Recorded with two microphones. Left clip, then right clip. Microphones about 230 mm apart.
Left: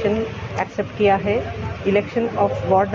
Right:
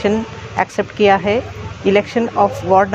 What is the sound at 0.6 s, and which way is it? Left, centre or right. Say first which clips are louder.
Speech: right 6 dB; right.